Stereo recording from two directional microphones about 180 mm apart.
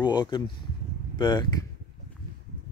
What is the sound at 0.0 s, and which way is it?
Speech, 25° left (ahead or behind).